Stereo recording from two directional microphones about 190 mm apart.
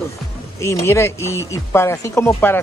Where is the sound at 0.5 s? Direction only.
15° left (ahead or behind).